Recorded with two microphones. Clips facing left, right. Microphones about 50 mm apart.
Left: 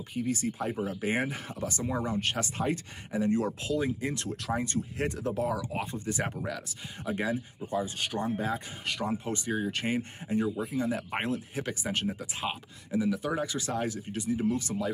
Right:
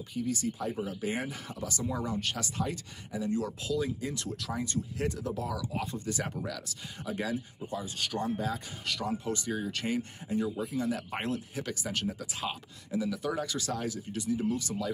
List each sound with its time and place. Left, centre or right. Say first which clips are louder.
0.1 s speech: left 2 dB; left